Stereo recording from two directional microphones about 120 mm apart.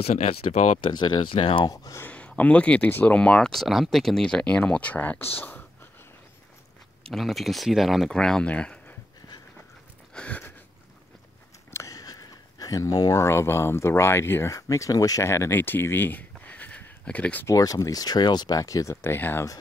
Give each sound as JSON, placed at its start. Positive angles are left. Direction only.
{"t": 0.0, "sound": "speech", "side_deg": 65}
{"t": 0.7, "sound": "speech", "side_deg": 40}
{"t": 1.7, "sound": "speech", "side_deg": 25}
{"t": 2.0, "sound": "speech", "side_deg": 10}
{"t": 7.1, "sound": "speech", "side_deg": 0}
{"t": 10.1, "sound": "a sound", "side_deg": 10}
{"t": 11.7, "sound": "speech", "side_deg": 30}
{"t": 17.5, "sound": "speech", "side_deg": 25}